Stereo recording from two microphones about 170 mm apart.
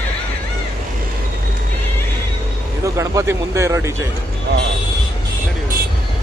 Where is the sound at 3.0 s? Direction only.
15° right (ahead or behind).